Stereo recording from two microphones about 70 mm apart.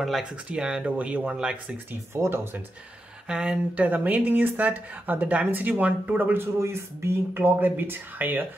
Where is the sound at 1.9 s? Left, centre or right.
Right.